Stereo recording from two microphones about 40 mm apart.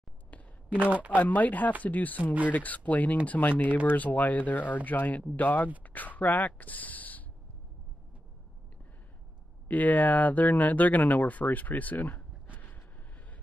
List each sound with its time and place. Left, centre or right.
0.7 s a man's voice: right
1.1 s speech: left
9.7 s speech: left